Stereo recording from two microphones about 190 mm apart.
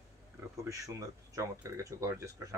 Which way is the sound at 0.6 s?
15° right (ahead or behind).